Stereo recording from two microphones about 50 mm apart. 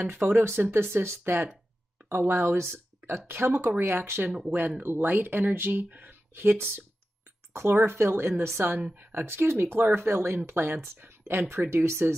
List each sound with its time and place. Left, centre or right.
0.0 s speech: right
7.5 s speech: right